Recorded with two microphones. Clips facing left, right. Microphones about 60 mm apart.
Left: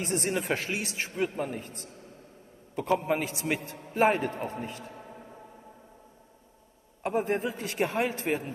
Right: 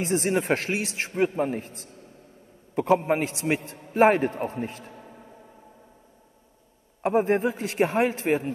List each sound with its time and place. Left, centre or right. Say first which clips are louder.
0.0 s speech: right 5 dB; right
0.7 s speech: right 5 dB; right
0.9 s speech: right 7 dB; right
3.0 s speech: right 4 dB; right
7.0 s speech: right 6 dB; right